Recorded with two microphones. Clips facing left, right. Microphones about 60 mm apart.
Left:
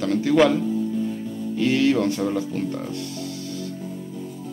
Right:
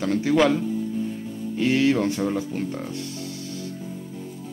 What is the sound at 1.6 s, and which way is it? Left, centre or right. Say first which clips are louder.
Speech: left 1 dB; centre.